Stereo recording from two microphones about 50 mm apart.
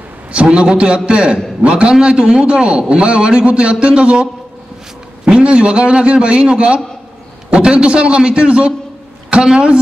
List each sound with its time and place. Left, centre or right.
0.3 s a man's voice: right
5.3 s a man's voice: right